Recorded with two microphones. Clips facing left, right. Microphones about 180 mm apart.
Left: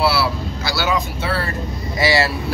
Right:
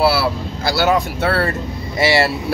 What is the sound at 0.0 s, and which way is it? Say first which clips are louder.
Speech: right 3 dB; 50° right (ahead or behind).